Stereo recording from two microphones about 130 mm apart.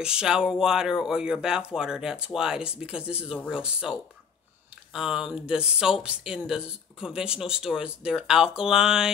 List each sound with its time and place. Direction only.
0.0 s speech: 5° right (ahead or behind)
4.9 s speech: 5° right (ahead or behind)